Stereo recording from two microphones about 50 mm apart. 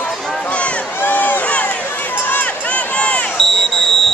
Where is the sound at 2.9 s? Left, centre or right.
Left.